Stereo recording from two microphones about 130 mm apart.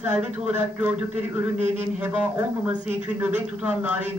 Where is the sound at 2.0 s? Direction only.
10° right (ahead or behind).